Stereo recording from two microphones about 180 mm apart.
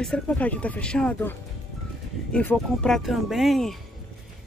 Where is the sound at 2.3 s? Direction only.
5° left (ahead or behind).